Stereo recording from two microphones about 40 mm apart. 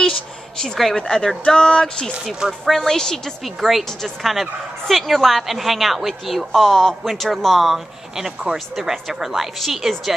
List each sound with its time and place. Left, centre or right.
0.0 s a sound: centre
0.9 s a woman's voice: centre
2.6 s a woman's voice: centre
3.4 s speech: centre